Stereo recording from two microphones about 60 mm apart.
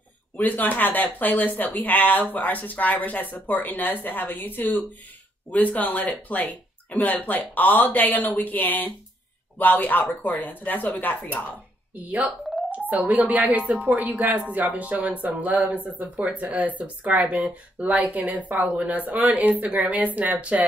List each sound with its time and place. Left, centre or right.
0.4 s speech: left
12.6 s speech: right